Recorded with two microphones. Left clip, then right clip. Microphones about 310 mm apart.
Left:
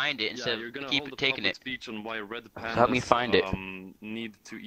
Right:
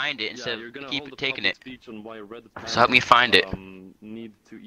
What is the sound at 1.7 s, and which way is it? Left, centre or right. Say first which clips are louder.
Speech: left 4 dB; left.